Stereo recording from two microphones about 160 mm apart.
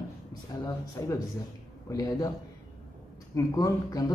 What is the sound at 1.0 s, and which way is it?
Speech, 20° left (ahead or behind).